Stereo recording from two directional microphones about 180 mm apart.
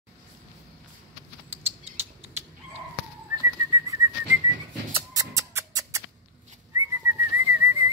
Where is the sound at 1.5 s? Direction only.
15° right (ahead or behind).